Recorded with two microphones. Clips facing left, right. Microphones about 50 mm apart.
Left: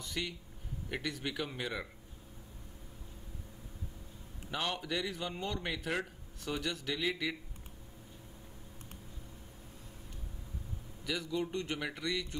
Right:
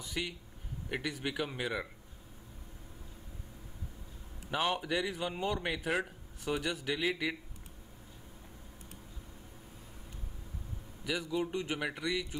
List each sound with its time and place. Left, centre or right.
0.0 s a man's voice: centre
4.5 s a man's voice: centre
11.1 s a man's voice: centre